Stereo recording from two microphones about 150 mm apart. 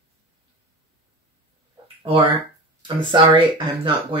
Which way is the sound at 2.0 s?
35° right (ahead or behind).